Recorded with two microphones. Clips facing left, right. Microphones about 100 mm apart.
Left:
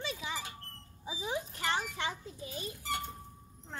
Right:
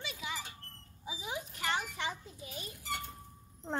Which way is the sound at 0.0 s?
35° left (ahead or behind).